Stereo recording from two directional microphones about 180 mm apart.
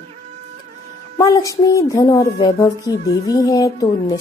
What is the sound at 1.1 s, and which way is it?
A woman's voice, 20° left (ahead or behind).